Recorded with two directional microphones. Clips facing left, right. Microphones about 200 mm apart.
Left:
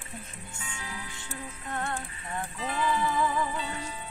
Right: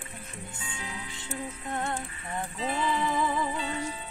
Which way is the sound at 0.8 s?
20° right (ahead or behind).